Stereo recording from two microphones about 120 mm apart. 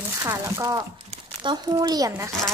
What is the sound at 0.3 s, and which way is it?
Speech, 25° right (ahead or behind).